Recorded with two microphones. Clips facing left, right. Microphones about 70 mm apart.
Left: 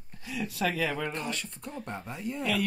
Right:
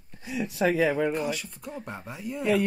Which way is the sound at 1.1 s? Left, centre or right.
Centre.